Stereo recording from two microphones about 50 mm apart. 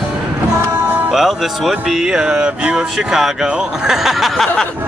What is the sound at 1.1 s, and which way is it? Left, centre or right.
Speech, centre.